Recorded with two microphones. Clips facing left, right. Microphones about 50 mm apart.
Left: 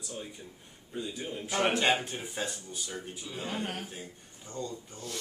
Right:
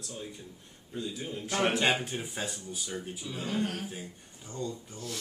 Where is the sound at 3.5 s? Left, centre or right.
Centre.